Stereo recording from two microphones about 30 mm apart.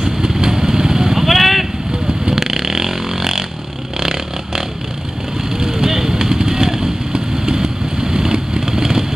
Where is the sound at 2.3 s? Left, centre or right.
Centre.